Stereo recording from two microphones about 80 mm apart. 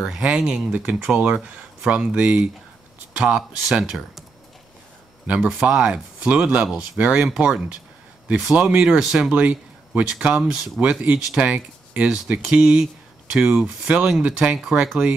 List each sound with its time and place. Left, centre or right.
0.0 s speech: centre
5.2 s speech: centre